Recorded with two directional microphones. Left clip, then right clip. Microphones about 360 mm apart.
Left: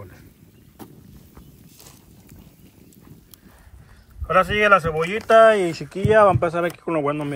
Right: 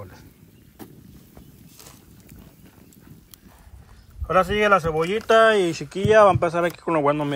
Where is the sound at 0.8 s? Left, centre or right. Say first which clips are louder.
Left 1 dB; centre.